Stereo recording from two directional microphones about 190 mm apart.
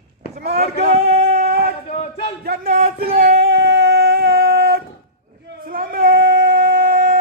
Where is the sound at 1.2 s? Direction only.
55° right (ahead or behind).